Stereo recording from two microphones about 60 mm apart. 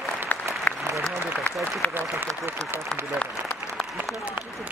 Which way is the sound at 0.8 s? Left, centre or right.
Right.